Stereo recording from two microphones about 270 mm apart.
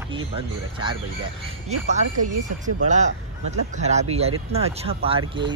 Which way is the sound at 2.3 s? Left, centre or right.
Right.